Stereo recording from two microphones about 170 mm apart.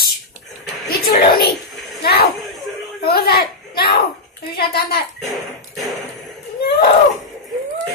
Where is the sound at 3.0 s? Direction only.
65° left (ahead or behind).